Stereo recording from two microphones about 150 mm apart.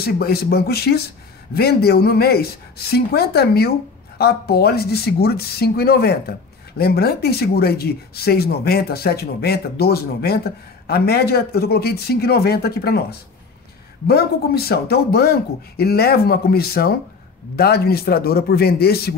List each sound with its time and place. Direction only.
0.0 s speech: 90° left